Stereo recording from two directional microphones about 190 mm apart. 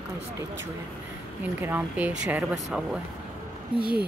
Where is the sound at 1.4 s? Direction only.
10° right (ahead or behind).